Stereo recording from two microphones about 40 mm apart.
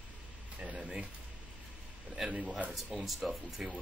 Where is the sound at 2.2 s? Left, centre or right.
Right.